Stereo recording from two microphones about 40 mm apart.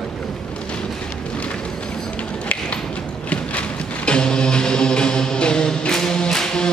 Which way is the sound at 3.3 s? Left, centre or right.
Left.